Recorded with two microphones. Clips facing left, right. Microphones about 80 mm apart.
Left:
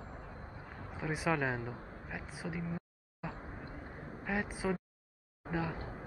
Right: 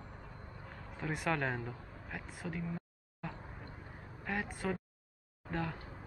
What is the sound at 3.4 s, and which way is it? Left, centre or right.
Vehicle, left.